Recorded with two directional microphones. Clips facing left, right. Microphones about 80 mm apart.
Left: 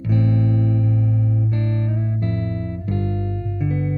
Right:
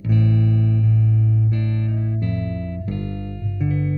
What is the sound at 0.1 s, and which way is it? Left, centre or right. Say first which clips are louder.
Music: even; left.